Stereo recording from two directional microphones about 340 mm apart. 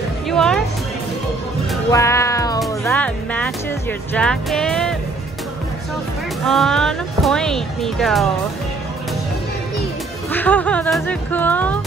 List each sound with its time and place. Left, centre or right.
0.3 s music: centre
1.9 s cat: centre
2.6 s music: centre
4.1 s speech: centre
6.4 s speech: centre
10.3 s speech: centre